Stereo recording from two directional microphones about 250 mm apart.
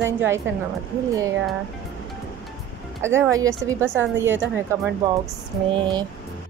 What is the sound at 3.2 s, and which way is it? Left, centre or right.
Speech, centre.